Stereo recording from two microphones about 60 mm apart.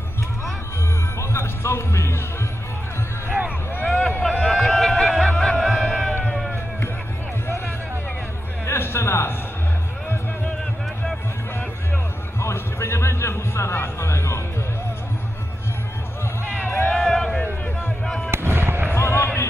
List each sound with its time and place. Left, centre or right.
1.2 s speech: left
3.8 s a sound: centre
8.6 s music: left
12.4 s music: left
16.9 s a sound: centre
18.0 s fireworks: centre
18.3 s fireworks: right
18.9 s basketball bounce: left